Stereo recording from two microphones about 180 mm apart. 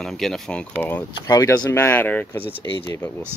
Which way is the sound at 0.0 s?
Centre (ahead or behind).